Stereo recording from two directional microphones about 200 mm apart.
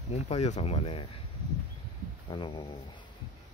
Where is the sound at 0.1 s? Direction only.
35° left (ahead or behind).